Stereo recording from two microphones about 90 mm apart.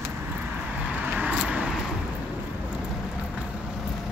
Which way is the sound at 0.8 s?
15° right (ahead or behind).